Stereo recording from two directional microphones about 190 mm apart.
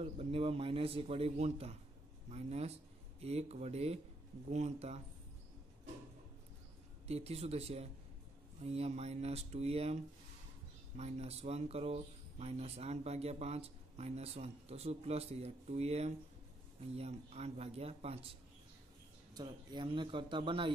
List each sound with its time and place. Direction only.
0.0 s speech: 30° right (ahead or behind)
7.1 s speech: 35° right (ahead or behind)
19.3 s speech: 25° right (ahead or behind)